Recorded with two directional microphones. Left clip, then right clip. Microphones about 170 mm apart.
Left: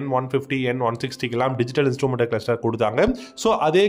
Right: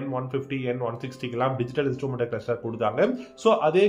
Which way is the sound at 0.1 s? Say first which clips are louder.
Left 9 dB; 30° left (ahead or behind).